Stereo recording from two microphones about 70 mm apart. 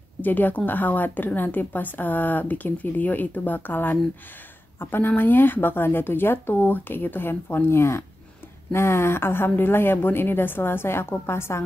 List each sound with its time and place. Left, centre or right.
0.2 s a woman's voice: left